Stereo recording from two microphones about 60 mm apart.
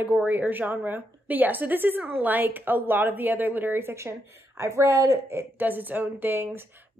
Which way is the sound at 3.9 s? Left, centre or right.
Right.